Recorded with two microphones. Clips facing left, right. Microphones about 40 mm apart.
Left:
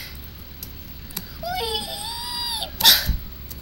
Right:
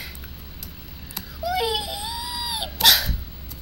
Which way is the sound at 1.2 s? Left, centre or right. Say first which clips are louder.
Right 3 dB; centre.